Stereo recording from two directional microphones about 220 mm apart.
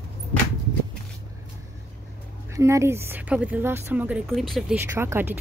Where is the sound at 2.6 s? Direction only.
15° right (ahead or behind).